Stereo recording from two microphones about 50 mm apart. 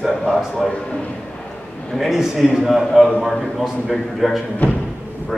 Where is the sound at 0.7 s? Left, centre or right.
Centre.